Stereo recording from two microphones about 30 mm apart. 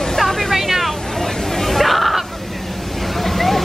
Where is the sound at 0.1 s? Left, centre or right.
Centre.